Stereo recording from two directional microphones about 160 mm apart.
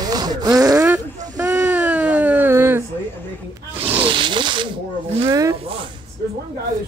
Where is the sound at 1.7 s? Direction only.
5° right (ahead or behind).